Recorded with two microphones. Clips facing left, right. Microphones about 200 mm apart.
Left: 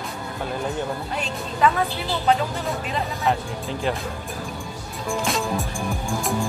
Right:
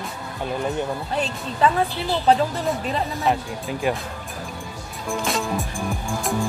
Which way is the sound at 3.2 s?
15° right (ahead or behind).